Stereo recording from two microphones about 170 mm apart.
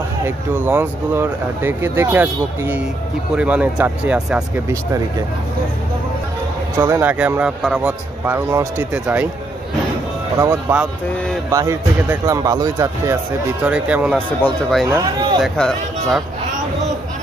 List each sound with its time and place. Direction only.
0.2 s speech: 10° right (ahead or behind)
6.8 s speech: 10° right (ahead or behind)
8.3 s speech: 15° right (ahead or behind)
10.4 s speech: 10° right (ahead or behind)
13.7 s speech: 5° right (ahead or behind)
14.1 s speech: 5° left (ahead or behind)
14.9 s speech: 20° right (ahead or behind)
15.4 s speech: centre (ahead or behind)